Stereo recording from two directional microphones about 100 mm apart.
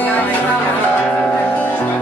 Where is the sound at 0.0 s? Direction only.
20° left (ahead or behind).